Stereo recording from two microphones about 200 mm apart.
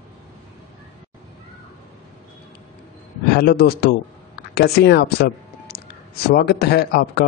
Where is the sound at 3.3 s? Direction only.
50° left (ahead or behind).